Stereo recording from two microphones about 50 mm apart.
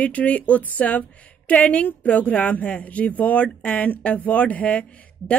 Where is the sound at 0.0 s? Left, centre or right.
Left.